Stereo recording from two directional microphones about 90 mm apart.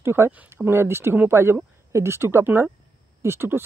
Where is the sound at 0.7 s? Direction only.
25° right (ahead or behind).